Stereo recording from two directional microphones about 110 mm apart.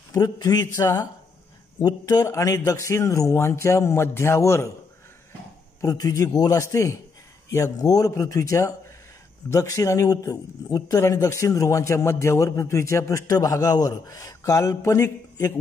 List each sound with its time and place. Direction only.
0.1 s a man's voice: 35° left (ahead or behind)
5.8 s a man's voice: 35° left (ahead or behind)